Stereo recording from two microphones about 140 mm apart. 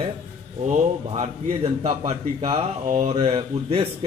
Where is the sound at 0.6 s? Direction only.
60° right (ahead or behind).